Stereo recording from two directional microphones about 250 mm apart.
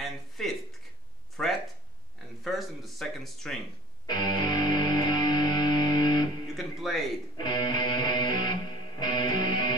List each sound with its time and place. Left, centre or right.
0.4 s a sound: centre
4.1 s music: centre
6.5 s music: centre
7.4 s music: centre